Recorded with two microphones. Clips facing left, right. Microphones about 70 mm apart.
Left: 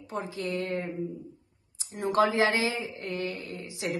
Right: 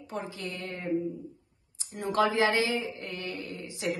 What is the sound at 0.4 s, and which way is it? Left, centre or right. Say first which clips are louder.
Speech: left 7 dB; left.